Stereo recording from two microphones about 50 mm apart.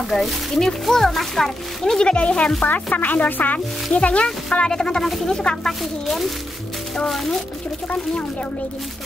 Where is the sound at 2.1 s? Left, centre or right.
Left.